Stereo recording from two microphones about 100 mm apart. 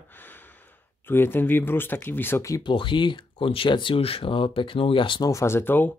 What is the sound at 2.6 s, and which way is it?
Speech, 55° left (ahead or behind).